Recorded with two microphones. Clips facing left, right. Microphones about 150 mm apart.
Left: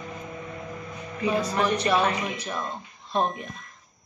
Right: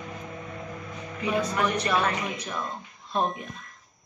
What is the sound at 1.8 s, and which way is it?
Speech, 20° left (ahead or behind).